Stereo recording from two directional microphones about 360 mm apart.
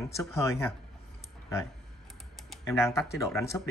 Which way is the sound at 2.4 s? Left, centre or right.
Centre.